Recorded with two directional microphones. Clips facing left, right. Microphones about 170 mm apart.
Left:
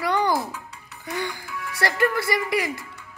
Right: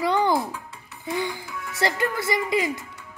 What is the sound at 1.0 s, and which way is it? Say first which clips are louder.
Speech: right 2 dB; 20° right (ahead or behind).